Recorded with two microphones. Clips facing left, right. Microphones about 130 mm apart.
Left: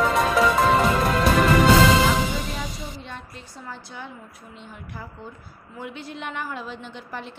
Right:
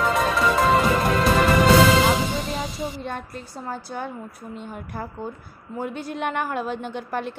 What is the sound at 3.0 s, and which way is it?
A woman's voice, 50° right (ahead or behind).